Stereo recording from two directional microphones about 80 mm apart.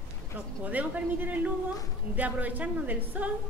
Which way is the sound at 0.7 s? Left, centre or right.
Centre.